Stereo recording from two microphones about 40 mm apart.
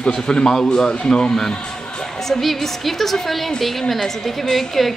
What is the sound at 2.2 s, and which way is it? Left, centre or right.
A woman's voice, centre.